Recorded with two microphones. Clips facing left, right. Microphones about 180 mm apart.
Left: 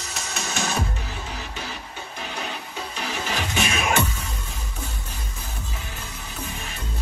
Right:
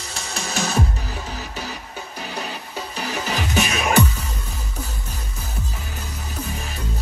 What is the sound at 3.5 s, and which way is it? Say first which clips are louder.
Music: right 5 dB; 35° right (ahead or behind).